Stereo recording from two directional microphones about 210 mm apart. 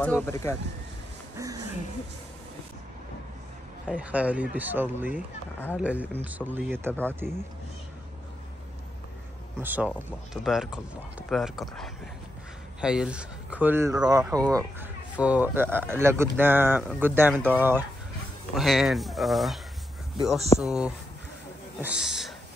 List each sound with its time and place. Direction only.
0.0 s speech: 10° left (ahead or behind)
1.4 s a sound: 15° right (ahead or behind)
3.9 s speech: 5° right (ahead or behind)
9.6 s speech: 10° right (ahead or behind)